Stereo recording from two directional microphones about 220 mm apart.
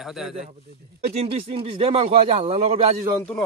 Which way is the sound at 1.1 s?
25° right (ahead or behind).